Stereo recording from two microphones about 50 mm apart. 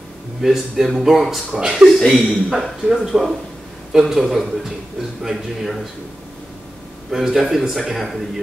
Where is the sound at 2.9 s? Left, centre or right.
Centre.